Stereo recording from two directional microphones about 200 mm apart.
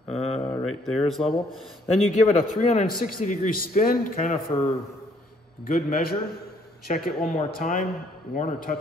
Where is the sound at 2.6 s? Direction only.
35° left (ahead or behind).